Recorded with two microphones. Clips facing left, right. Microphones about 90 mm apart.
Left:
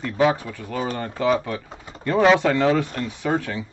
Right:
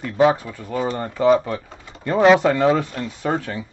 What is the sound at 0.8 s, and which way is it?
Speech, 30° right (ahead or behind).